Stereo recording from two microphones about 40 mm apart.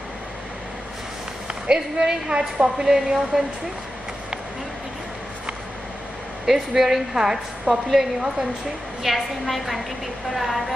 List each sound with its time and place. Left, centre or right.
1.7 s a woman's voice: right
6.4 s a woman's voice: centre